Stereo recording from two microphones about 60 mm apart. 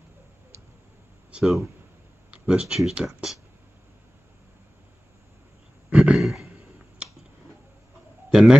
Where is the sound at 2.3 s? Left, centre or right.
Centre.